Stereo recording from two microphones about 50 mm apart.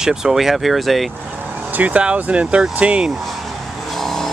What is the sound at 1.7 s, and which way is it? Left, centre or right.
Speech, right.